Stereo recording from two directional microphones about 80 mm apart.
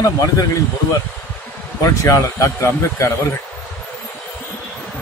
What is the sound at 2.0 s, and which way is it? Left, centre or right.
A man's voice, left.